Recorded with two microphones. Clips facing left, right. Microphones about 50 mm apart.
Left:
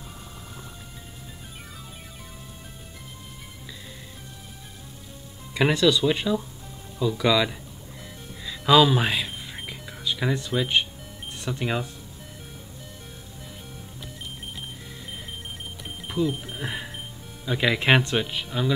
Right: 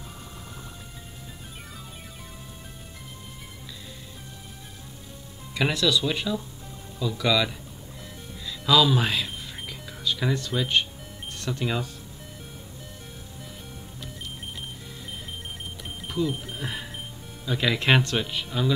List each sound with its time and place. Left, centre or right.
5.5 s speech: centre
8.5 s music: left
11.4 s speech: centre
16.1 s speech: centre